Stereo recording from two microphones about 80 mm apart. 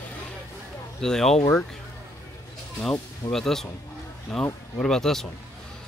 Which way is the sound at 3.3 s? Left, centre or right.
Centre.